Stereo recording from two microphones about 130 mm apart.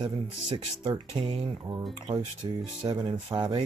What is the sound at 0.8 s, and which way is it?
Speech, 35° right (ahead or behind).